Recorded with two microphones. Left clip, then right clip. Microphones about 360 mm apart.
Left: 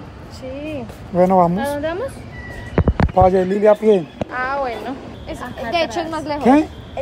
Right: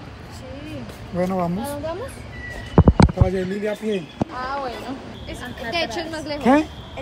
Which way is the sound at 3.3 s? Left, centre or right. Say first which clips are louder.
Left 11 dB; left.